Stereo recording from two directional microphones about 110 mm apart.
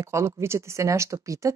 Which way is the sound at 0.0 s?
25° right (ahead or behind).